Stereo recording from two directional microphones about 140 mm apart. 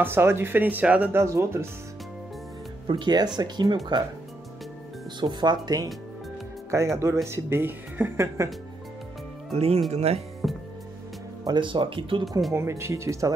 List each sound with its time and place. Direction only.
0.0 s speech: 15° right (ahead or behind)
1.2 s speech: 20° right (ahead or behind)
2.9 s speech: 30° right (ahead or behind)
5.2 s speech: 30° right (ahead or behind)
9.5 s speech: 45° right (ahead or behind)
10.4 s music: centre (ahead or behind)
11.4 s speech: 35° right (ahead or behind)
12.3 s speech: centre (ahead or behind)
12.5 s speech: 20° right (ahead or behind)